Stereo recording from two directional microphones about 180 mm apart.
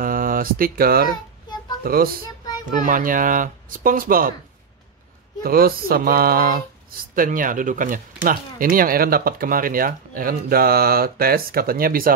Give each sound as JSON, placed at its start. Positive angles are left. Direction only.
{"t": 0.0, "sound": "speech", "side_deg": -50}
{"t": 5.4, "sound": "a sound", "side_deg": -55}
{"t": 7.2, "sound": "speech", "side_deg": -50}